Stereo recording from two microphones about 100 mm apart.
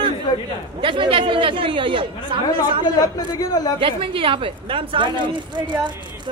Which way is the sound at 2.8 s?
40° left (ahead or behind).